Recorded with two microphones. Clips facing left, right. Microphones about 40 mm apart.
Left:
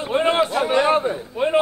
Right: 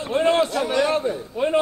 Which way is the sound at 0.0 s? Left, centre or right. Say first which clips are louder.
Even; left.